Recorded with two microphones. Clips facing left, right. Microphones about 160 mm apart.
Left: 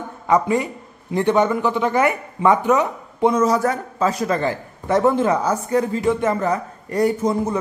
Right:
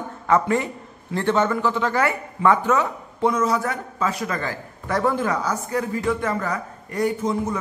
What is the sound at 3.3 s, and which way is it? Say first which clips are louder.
A man's voice: left 5 dB; 40° left (ahead or behind).